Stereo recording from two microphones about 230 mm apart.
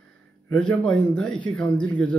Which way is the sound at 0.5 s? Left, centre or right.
Centre.